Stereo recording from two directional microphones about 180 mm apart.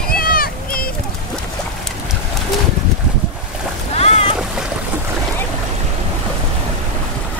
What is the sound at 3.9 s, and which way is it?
Boat, 35° left (ahead or behind).